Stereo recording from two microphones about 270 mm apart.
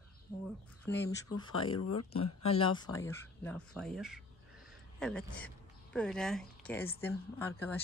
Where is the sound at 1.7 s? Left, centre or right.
Left.